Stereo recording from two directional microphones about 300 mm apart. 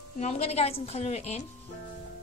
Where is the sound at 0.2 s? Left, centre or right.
Left.